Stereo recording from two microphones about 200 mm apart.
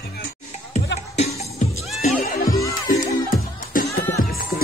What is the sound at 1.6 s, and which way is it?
Music, 35° left (ahead or behind).